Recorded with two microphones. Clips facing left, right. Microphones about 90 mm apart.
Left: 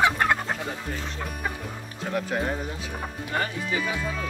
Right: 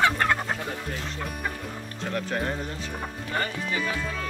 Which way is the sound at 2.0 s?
5° left (ahead or behind).